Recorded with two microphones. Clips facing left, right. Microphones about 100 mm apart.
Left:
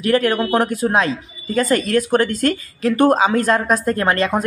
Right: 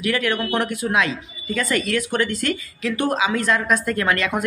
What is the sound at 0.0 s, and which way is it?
Speech, 40° left (ahead or behind).